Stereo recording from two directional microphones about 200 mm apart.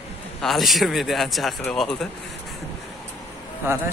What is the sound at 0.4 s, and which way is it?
Speech, centre (ahead or behind).